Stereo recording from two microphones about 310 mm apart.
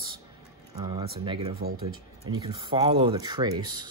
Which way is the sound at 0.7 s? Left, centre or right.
Centre.